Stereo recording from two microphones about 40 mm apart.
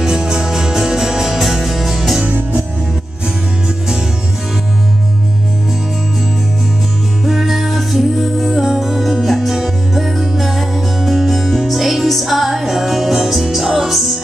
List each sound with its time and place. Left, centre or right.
0.0 s music: centre
7.2 s music: centre